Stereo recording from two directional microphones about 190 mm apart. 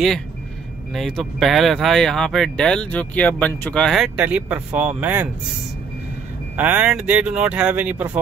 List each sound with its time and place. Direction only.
0.9 s speech: centre (ahead or behind)
6.5 s speech: 10° right (ahead or behind)